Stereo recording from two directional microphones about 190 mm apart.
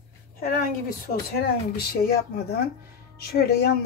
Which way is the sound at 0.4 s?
50° left (ahead or behind).